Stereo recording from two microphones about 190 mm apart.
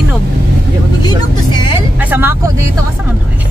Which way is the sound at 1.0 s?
25° left (ahead or behind).